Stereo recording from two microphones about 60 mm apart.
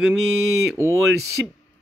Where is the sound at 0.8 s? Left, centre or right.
Right.